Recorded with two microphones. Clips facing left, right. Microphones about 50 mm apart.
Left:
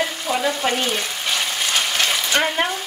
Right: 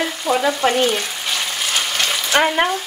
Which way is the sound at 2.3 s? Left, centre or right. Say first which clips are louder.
Right 6 dB; centre.